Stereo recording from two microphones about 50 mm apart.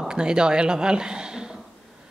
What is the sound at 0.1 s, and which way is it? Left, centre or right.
Speech, centre.